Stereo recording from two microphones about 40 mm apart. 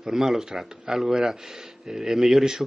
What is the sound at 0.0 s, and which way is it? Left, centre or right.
A man's voice, centre.